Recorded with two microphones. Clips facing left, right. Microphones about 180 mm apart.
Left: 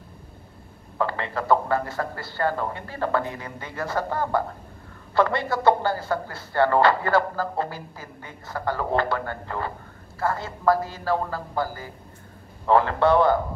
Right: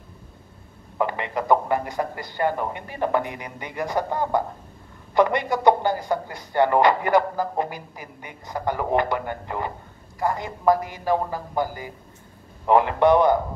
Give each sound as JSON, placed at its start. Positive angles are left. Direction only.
{"t": 0.9, "sound": "speech", "side_deg": -15}